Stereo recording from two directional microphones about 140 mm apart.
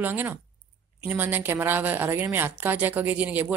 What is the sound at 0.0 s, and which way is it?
A woman's voice, 15° right (ahead or behind).